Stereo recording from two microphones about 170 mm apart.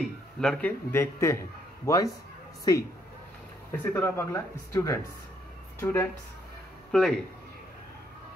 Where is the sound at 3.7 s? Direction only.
15° left (ahead or behind).